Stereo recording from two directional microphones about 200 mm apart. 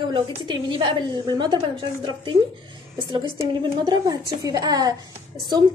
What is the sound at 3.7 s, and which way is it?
A woman's voice, 20° right (ahead or behind).